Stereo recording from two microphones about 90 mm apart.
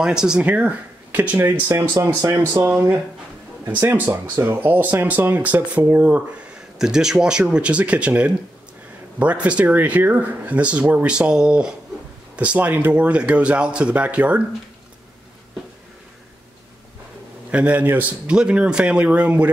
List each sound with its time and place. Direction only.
0.0 s speech: 10° right (ahead or behind)
1.7 s speech: 35° right (ahead or behind)
2.5 s speech: 20° right (ahead or behind)
17.5 s speech: 15° right (ahead or behind)